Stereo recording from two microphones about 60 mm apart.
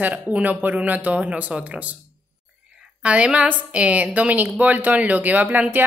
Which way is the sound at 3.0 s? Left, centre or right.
Centre.